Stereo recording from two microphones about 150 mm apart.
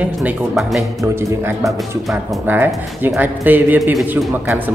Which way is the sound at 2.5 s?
15° right (ahead or behind).